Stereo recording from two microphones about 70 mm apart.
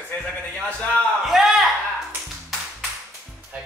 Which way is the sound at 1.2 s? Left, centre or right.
Centre.